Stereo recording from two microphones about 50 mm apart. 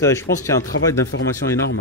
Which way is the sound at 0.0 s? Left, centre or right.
Left.